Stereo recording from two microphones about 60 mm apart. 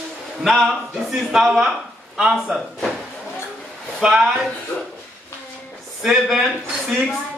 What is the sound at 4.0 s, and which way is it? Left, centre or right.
Speech, centre.